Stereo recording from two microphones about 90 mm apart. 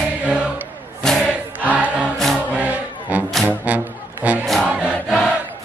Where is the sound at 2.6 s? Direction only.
15° right (ahead or behind).